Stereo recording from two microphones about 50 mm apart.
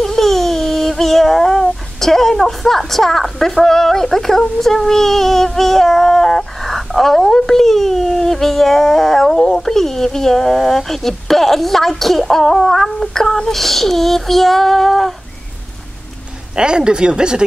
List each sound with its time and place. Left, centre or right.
0.0 s humming: centre
16.5 s speech: centre